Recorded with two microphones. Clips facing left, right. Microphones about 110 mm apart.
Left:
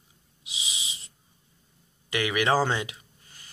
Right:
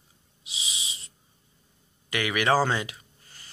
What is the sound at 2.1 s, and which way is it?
Speech, 20° left (ahead or behind).